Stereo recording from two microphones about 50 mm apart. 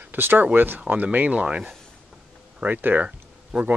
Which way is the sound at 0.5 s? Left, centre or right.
Right.